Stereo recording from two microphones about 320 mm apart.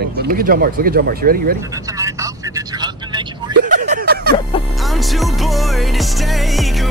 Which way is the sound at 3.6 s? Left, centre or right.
Right.